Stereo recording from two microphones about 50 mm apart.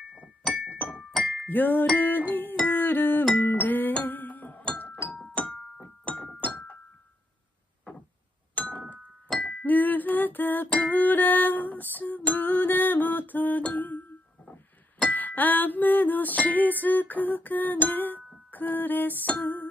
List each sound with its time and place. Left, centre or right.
0.8 s music: left
5.3 s keyboard: left
6.0 s music: centre
8.5 s a sound: left
9.3 s music: centre
9.7 s music: left
15.0 s music: left